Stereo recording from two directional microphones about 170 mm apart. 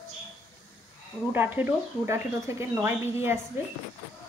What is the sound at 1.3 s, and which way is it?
A woman's voice, 10° right (ahead or behind).